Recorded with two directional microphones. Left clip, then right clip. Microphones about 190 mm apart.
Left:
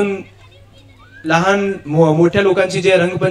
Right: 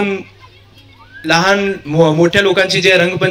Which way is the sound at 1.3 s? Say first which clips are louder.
Right 2 dB; centre (ahead or behind).